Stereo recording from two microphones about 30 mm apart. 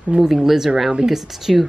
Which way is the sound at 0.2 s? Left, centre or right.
Centre.